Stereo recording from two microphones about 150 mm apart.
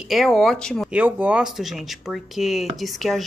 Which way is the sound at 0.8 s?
10° right (ahead or behind).